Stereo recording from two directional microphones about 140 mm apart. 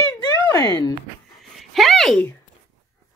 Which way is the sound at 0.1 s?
20° left (ahead or behind).